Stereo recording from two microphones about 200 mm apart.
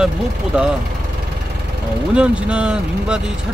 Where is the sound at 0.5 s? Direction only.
5° right (ahead or behind).